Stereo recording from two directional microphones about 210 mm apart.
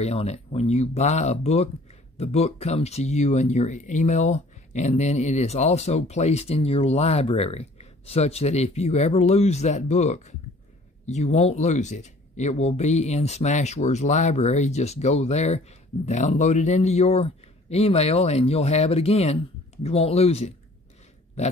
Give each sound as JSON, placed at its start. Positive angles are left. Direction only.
{"t": 0.0, "sound": "speech", "side_deg": 30}